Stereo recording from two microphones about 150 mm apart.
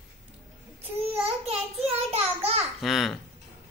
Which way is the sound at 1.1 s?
45° right (ahead or behind).